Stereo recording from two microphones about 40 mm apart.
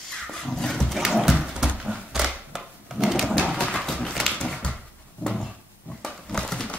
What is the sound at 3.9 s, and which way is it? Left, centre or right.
Dog, centre.